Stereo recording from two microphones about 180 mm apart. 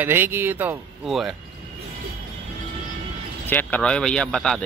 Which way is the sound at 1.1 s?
Centre (ahead or behind).